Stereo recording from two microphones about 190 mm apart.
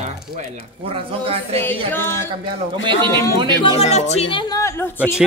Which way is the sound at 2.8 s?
25° right (ahead or behind).